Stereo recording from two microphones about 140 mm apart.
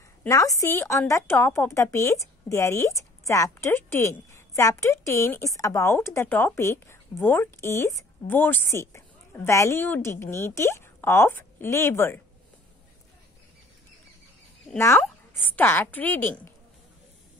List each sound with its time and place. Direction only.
0.3 s a woman's voice: 25° left (ahead or behind)
14.8 s a woman's voice: 20° left (ahead or behind)